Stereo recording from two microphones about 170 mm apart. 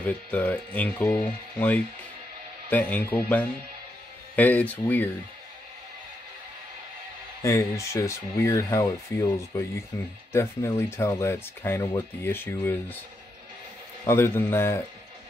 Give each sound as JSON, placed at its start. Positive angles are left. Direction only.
{"t": 0.0, "sound": "speech", "side_deg": 10}
{"t": 2.7, "sound": "speech", "side_deg": 10}
{"t": 7.4, "sound": "speech", "side_deg": 15}
{"t": 14.0, "sound": "speech", "side_deg": 15}